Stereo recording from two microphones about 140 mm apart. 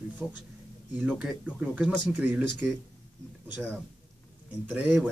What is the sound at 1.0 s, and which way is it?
Speech, 5° right (ahead or behind).